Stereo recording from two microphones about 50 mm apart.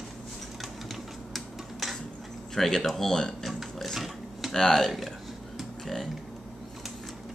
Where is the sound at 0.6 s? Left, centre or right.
Centre.